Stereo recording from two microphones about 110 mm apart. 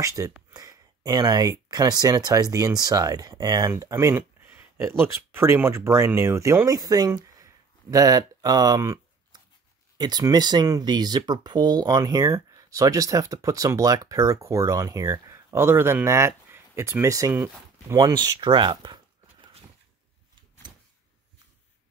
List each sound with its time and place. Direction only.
0.0 s speech: 30° right (ahead or behind)
4.1 s speech: 15° right (ahead or behind); by 7.1 s 35° right (ahead or behind)
7.2 s a sound: 30° right (ahead or behind)
9.9 s speech: 40° right (ahead or behind); by 17.9 s 25° right (ahead or behind)
17.9 s speech: 35° right (ahead or behind)